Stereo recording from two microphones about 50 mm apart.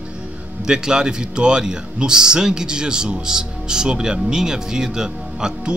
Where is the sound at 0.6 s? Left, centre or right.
Centre.